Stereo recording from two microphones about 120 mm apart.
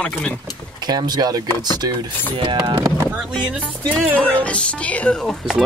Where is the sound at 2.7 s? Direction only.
20° right (ahead or behind).